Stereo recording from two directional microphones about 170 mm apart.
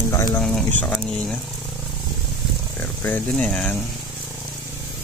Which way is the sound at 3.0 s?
5° left (ahead or behind).